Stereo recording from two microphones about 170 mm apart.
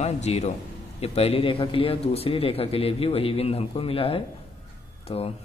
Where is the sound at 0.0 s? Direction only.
40° left (ahead or behind).